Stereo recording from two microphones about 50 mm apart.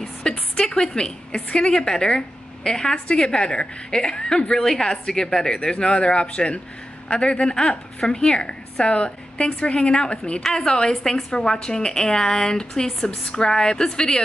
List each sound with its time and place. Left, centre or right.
0.0 s a woman's voice: centre
10.4 s a woman's voice: centre